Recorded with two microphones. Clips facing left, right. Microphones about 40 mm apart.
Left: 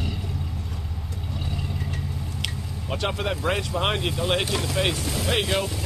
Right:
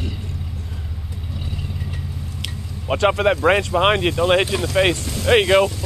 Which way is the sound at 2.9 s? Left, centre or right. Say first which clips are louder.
Right 10 dB; right.